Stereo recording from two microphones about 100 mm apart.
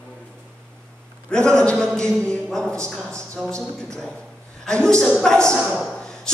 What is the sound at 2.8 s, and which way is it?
Speech, 30° right (ahead or behind).